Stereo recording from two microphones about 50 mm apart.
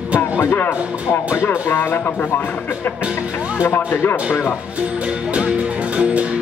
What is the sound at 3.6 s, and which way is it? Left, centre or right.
Speech, left.